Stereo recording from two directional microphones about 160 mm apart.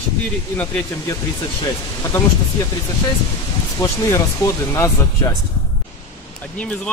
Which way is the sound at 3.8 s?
20° left (ahead or behind).